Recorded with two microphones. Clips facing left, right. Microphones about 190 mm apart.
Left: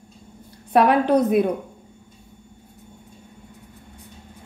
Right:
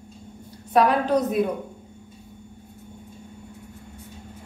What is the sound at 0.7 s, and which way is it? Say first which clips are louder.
Speech: left 3 dB; 60° left (ahead or behind).